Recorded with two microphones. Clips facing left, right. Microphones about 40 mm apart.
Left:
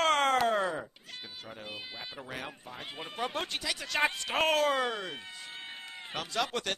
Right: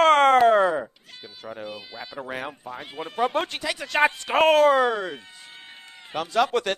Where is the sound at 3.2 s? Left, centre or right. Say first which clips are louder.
Right 9 dB; right.